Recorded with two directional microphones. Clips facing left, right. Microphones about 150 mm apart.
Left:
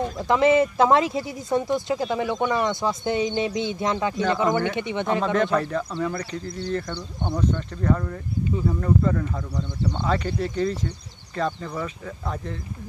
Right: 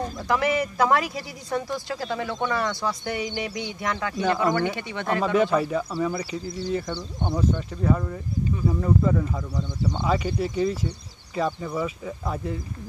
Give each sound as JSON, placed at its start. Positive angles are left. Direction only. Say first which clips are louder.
{"t": 0.2, "sound": "speech", "louder": "left 6 dB", "side_deg": 20}
{"t": 5.2, "sound": "speech", "louder": "right 4 dB", "side_deg": -10}
{"t": 7.0, "sound": "speech", "louder": "even", "side_deg": -15}